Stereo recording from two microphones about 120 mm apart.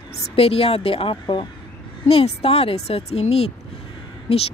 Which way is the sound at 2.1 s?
55° left (ahead or behind).